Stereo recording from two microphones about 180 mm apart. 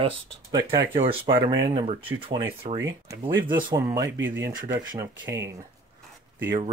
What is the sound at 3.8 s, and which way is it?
Speech, 20° right (ahead or behind).